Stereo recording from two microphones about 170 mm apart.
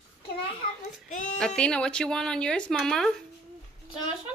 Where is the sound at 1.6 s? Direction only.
5° left (ahead or behind).